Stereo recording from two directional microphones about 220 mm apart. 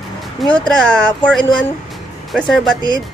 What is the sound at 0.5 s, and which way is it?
Speech, 5° left (ahead or behind).